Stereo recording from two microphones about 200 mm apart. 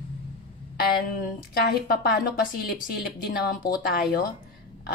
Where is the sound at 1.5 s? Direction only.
50° left (ahead or behind).